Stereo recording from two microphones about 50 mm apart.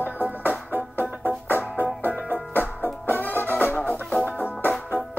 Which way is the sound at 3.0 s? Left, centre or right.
Left.